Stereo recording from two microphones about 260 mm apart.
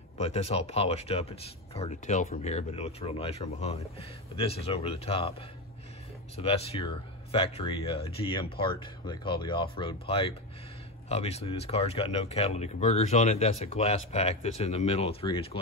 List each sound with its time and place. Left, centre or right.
0.2 s speech: left
6.3 s speech: left